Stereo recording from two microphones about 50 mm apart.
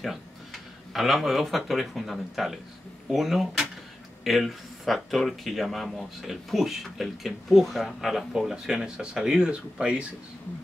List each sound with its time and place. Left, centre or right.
0.0 s speech: centre; by 10.0 s right